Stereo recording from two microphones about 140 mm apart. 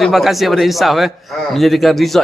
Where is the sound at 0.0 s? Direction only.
Centre (ahead or behind).